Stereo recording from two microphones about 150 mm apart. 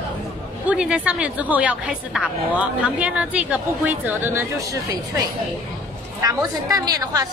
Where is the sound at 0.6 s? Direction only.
5° right (ahead or behind).